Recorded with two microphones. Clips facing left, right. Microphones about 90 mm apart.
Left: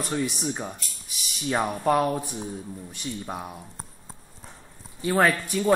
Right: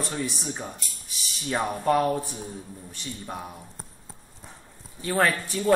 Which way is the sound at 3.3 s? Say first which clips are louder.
Left 2 dB; 5° left (ahead or behind).